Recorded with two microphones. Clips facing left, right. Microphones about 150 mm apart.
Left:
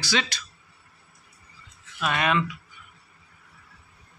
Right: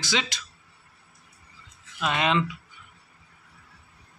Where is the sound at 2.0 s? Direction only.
20° right (ahead or behind).